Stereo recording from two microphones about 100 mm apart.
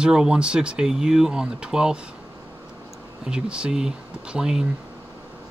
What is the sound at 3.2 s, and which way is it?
Speech, 10° right (ahead or behind).